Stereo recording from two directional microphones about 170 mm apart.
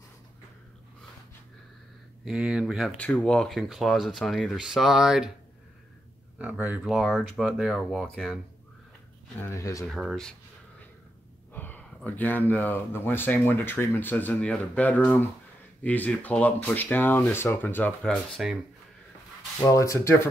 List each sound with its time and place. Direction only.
2.2 s speech: centre (ahead or behind)
6.3 s speech: 10° right (ahead or behind)
9.4 s speech: 15° left (ahead or behind)
9.8 s speech: centre (ahead or behind)
11.5 s speech: 10° left (ahead or behind)
18.1 s speech: centre (ahead or behind)
19.6 s speech: 20° left (ahead or behind)